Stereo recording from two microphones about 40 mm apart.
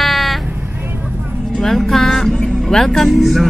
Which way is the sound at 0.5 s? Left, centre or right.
Right.